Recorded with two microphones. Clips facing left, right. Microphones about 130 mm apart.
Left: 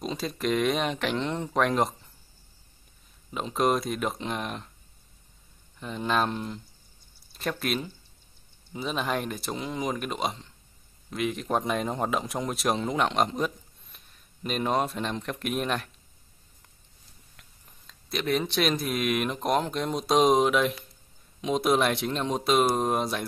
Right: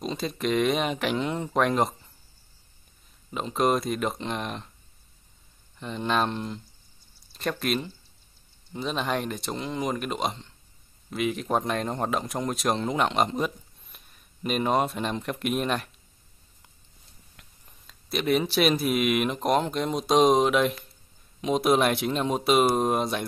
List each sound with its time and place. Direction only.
0.0 s a man's voice: centre (ahead or behind)
3.3 s a man's voice: centre (ahead or behind)
5.8 s a man's voice: centre (ahead or behind)
17.4 s a man's voice: 5° right (ahead or behind)